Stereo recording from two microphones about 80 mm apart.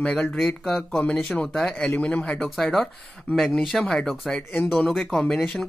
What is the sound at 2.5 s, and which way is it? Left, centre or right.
Speech, centre.